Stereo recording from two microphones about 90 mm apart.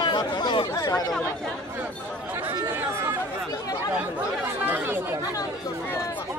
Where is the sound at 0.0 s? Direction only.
55° left (ahead or behind).